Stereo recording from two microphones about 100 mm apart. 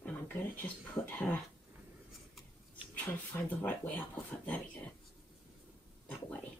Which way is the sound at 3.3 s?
15° left (ahead or behind).